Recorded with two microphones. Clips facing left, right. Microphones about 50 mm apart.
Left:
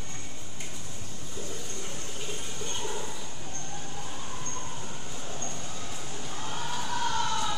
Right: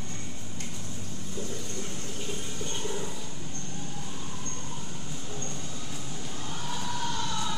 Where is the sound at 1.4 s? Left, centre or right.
Centre.